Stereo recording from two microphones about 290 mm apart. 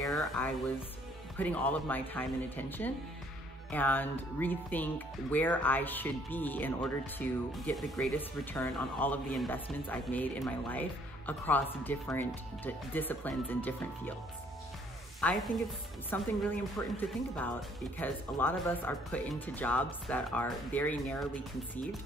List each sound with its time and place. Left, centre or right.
0.1 s a sound: centre
1.4 s speech: centre
15.1 s speech: centre